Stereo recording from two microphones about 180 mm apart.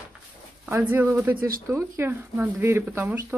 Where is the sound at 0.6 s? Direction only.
10° right (ahead or behind).